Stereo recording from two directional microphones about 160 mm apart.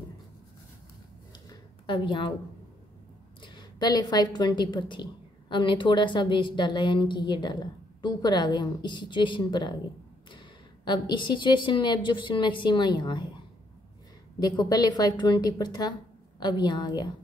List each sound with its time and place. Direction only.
1.5 s a sound: 30° left (ahead or behind)
3.4 s a woman's voice: 25° left (ahead or behind)
10.9 s a woman's voice: 30° left (ahead or behind)
14.4 s a woman's voice: 25° left (ahead or behind)